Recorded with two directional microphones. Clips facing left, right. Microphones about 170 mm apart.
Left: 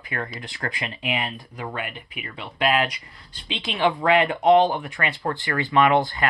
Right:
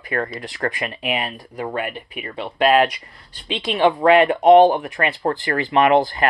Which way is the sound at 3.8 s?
20° right (ahead or behind).